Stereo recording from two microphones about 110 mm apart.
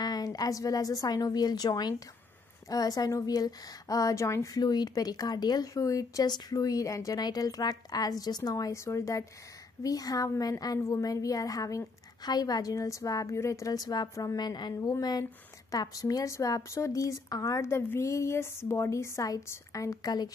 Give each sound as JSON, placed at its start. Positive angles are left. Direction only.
{"t": 0.0, "sound": "a woman's voice", "side_deg": 35}